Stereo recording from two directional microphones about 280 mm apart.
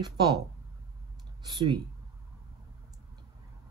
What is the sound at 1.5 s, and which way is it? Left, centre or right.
Speech, centre.